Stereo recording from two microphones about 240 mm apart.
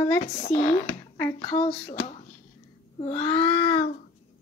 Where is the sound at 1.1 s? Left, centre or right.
Centre.